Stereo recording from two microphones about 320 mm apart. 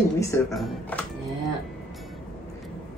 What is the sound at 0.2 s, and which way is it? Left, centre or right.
Speech, centre.